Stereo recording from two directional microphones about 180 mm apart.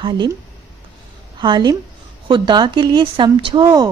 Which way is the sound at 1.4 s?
25° right (ahead or behind).